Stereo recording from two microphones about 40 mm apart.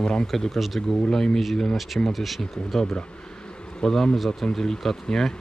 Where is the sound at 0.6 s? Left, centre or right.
Centre.